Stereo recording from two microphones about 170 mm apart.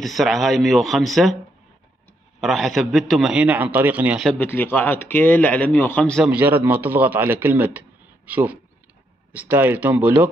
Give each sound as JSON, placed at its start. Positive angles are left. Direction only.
{"t": 0.0, "sound": "a man's voice", "side_deg": 0}
{"t": 2.4, "sound": "a man's voice", "side_deg": 0}
{"t": 4.3, "sound": "speech", "side_deg": 10}
{"t": 6.3, "sound": "a man's voice", "side_deg": -10}